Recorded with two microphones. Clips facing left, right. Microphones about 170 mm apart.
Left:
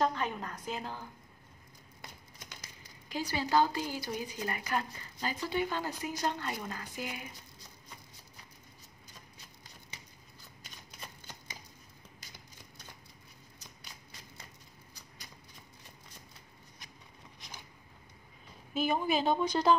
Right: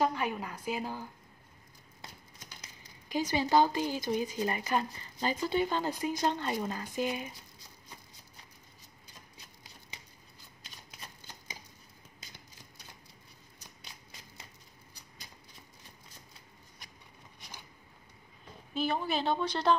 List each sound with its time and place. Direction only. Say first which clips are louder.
0.0 s a woman's voice: right 1 dB; 10° right (ahead or behind)
3.1 s a woman's voice: right 4 dB; 20° right (ahead or behind)
18.7 s speech: left 2 dB; 10° left (ahead or behind)